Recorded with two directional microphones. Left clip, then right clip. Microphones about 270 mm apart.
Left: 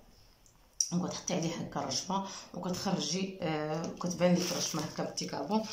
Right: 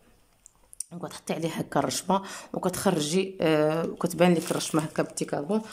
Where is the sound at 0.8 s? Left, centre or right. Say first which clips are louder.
Right 2 dB; right.